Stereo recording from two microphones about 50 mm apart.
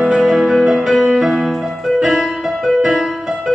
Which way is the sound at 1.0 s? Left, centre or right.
Centre.